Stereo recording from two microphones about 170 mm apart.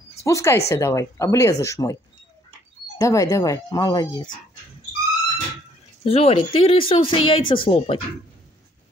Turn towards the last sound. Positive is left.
turn(degrees=30)  # may be behind; listen again after turning